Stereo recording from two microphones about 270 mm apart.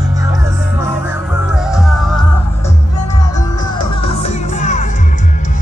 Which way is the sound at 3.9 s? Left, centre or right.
Left.